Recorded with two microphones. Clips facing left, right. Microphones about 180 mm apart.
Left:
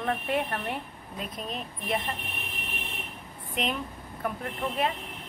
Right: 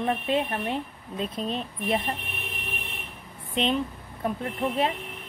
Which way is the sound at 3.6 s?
30° right (ahead or behind).